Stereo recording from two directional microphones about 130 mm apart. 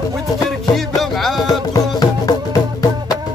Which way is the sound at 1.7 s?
30° left (ahead or behind).